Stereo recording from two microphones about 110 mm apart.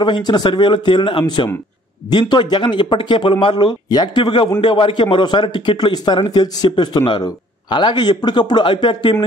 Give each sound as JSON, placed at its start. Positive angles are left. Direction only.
{"t": 0.0, "sound": "speech", "side_deg": 40}